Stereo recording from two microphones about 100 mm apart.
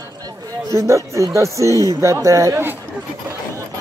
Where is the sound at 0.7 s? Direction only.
30° right (ahead or behind).